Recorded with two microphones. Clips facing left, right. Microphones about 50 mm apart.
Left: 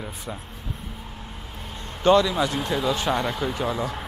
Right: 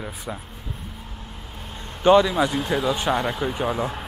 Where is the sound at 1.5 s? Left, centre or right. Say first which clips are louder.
Even; centre.